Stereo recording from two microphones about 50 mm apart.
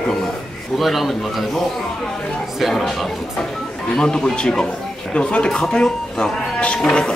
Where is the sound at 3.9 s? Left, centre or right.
Centre.